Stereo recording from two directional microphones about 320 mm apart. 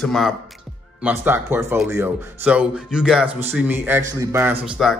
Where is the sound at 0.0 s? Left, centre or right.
Centre.